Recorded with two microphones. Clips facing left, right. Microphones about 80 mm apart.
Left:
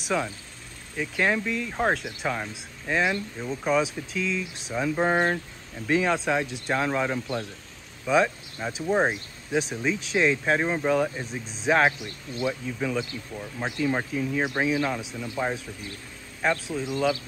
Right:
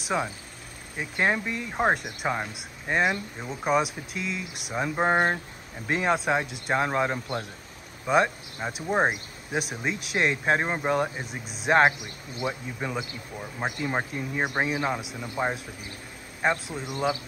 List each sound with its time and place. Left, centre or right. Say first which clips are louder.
0.1 s speech: even; right
16.4 s speech: left 1 dB; centre